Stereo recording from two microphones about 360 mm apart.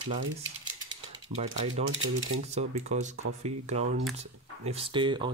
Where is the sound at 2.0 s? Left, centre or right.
Right.